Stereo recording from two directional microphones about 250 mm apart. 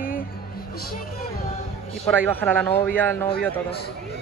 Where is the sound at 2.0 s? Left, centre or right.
Centre.